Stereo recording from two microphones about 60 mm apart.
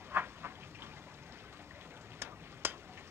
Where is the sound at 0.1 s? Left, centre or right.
Right.